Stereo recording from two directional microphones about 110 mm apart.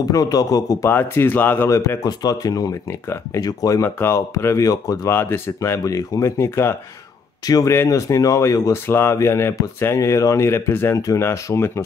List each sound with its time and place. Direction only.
0.1 s speech: 35° left (ahead or behind)
0.8 s speech: 20° left (ahead or behind)
2.0 s speech: 35° left (ahead or behind)
7.4 s speech: 35° left (ahead or behind)